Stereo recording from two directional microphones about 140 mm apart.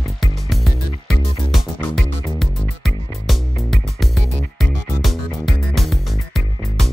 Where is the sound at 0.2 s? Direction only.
Centre (ahead or behind).